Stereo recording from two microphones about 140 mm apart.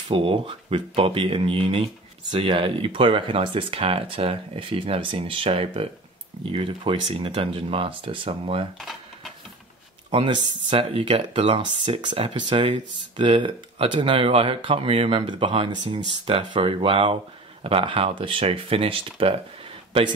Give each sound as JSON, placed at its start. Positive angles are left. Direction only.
{"t": 0.1, "sound": "speech", "side_deg": -40}
{"t": 8.7, "sound": "dishes", "side_deg": 0}
{"t": 10.1, "sound": "speech", "side_deg": -40}